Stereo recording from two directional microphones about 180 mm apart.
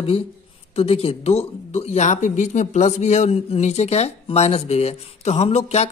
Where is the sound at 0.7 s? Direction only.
35° left (ahead or behind).